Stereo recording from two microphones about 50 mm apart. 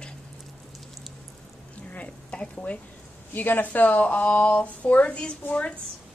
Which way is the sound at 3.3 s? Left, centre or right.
Left.